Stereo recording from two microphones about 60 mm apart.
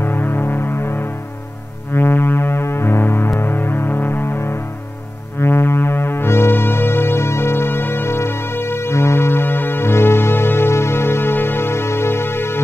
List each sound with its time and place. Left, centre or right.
0.0 s music: left